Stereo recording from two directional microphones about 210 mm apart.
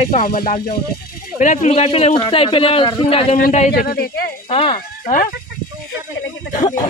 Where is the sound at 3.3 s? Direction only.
35° left (ahead or behind).